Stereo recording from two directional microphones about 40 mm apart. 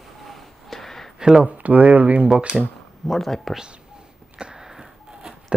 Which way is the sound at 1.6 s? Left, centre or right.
Right.